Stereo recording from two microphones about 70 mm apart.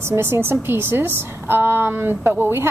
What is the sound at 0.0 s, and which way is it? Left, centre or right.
A woman's voice, right.